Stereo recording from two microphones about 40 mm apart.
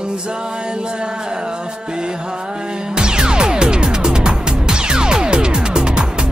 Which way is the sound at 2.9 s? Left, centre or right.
Right.